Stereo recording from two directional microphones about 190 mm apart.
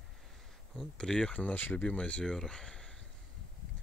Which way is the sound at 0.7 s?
5° left (ahead or behind).